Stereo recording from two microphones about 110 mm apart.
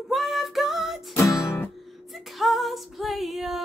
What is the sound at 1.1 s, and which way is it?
Music, 25° left (ahead or behind).